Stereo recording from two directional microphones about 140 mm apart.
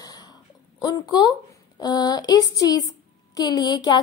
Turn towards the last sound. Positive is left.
turn(degrees=30)  # may be behind; listen again after turning